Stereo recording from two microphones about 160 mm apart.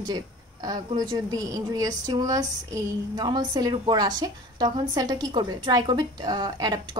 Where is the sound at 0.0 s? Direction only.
25° right (ahead or behind).